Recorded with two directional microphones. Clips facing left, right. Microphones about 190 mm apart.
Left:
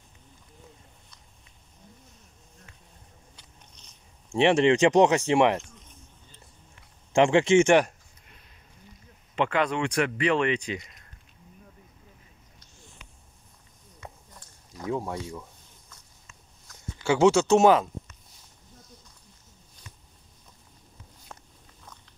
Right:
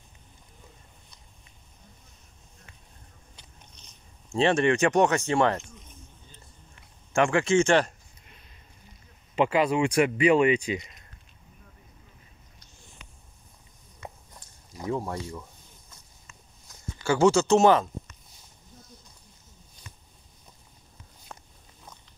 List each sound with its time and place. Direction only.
4.3 s speech: 15° left (ahead or behind)
7.1 s speech: 20° left (ahead or behind)
9.3 s speech: 5° right (ahead or behind)
14.9 s speech: centre (ahead or behind)
17.0 s speech: 5° left (ahead or behind)